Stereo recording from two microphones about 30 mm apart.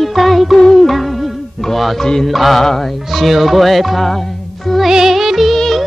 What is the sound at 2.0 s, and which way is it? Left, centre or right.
Mantra, centre.